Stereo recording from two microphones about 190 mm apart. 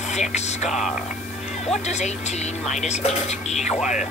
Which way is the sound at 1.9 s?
35° left (ahead or behind).